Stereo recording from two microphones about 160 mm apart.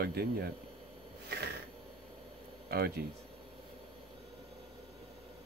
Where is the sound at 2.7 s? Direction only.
75° right (ahead or behind).